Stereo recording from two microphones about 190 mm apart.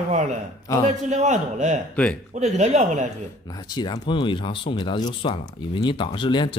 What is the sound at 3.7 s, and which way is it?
Speech, 20° left (ahead or behind).